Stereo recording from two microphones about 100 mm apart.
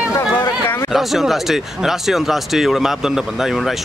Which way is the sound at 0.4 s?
25° left (ahead or behind).